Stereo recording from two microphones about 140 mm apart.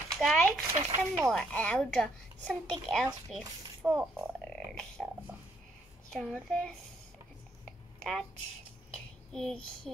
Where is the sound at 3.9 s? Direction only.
20° right (ahead or behind).